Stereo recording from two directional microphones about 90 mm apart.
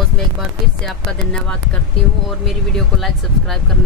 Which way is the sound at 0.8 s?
10° left (ahead or behind).